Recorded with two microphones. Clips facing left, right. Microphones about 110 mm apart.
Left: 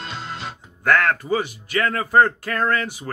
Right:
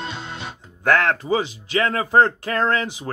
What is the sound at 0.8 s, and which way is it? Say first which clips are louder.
Speech: even; 20° right (ahead or behind).